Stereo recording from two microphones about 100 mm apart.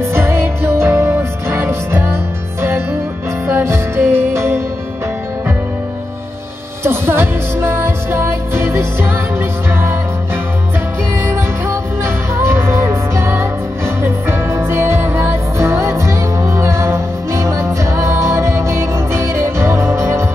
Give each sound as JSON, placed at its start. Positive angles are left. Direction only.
{"t": 0.0, "sound": "music", "side_deg": -25}
{"t": 3.4, "sound": "music", "side_deg": -25}
{"t": 6.8, "sound": "music", "side_deg": -25}
{"t": 11.3, "sound": "music", "side_deg": -25}